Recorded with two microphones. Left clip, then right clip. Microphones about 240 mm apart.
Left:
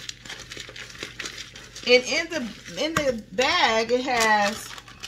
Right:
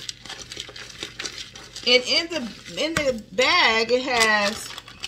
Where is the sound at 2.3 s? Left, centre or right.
Centre.